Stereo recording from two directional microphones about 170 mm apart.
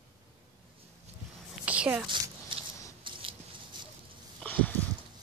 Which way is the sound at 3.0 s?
30° right (ahead or behind).